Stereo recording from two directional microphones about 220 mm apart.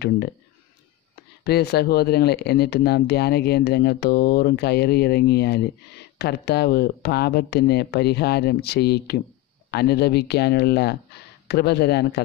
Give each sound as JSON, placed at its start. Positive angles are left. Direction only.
{"t": 1.4, "sound": "speech", "side_deg": 45}